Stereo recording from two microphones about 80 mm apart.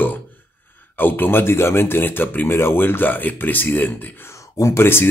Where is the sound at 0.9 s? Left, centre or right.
Left.